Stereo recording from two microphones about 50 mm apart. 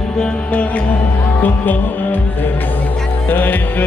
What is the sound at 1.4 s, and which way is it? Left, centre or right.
Speech, left.